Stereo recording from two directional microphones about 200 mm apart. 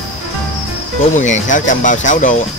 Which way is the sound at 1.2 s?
40° left (ahead or behind).